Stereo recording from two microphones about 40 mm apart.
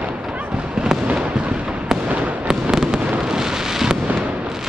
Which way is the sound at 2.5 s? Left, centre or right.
Centre.